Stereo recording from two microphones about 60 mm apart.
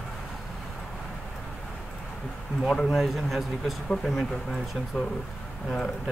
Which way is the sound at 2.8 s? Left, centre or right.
Centre.